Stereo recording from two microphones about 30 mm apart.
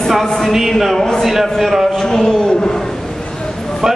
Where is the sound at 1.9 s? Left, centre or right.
Centre.